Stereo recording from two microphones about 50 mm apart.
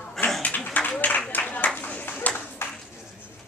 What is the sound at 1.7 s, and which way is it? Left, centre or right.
Clapping, left.